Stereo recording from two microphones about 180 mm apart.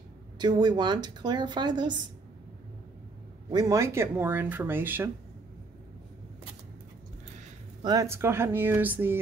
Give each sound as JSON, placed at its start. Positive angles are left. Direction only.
{"t": 0.4, "sound": "speech", "side_deg": -25}
{"t": 3.4, "sound": "speech", "side_deg": -20}
{"t": 7.8, "sound": "speech", "side_deg": -20}